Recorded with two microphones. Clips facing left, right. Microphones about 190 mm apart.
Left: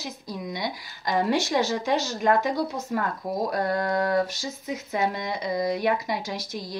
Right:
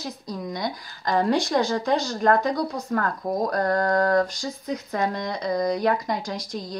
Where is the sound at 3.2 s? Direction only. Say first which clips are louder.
Right 3 dB; 20° right (ahead or behind).